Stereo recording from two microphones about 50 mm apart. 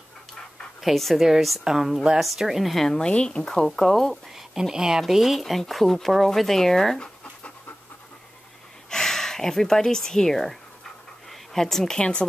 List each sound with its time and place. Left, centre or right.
0.7 s speech: centre
1.2 s a woman's voice: centre
3.0 s speech: centre
3.4 s speech: centre
4.4 s speech: centre
8.9 s speech: centre
11.2 s a sound: centre
12.0 s speech: left